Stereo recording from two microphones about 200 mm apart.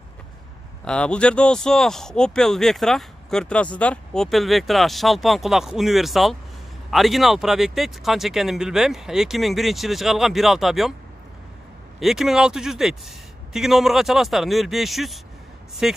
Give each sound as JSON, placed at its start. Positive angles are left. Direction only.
{"t": 0.8, "sound": "speech", "side_deg": 5}
{"t": 12.0, "sound": "speech", "side_deg": 0}